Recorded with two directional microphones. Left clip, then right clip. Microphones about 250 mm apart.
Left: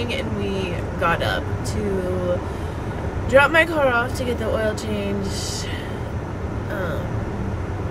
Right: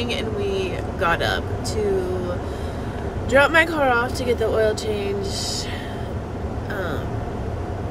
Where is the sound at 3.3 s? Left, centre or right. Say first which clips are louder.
Left 1 dB; centre.